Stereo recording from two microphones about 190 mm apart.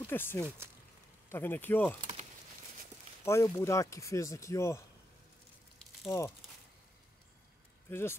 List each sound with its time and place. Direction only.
0.0 s speech: 10° left (ahead or behind)
3.3 s speech: 15° left (ahead or behind)
6.0 s speech: 15° left (ahead or behind)
7.9 s speech: 10° left (ahead or behind)